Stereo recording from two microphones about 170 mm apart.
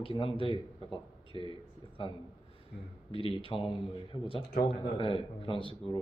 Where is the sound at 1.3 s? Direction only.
30° left (ahead or behind).